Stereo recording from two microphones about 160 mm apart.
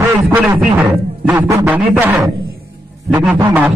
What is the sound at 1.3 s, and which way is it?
Speech, 15° right (ahead or behind).